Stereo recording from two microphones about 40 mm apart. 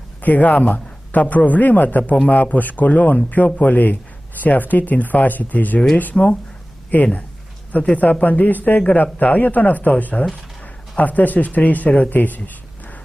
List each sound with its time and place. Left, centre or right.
0.2 s speech: left
6.1 s speech: left
6.9 s speech: left
7.8 s speech: left